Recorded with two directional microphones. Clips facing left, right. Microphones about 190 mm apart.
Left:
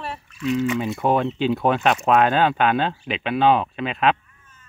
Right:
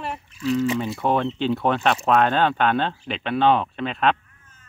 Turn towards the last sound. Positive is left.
turn(degrees=5)  # may be behind; listen again after turning